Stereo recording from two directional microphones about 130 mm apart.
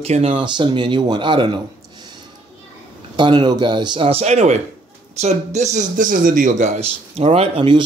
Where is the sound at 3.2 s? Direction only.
35° right (ahead or behind).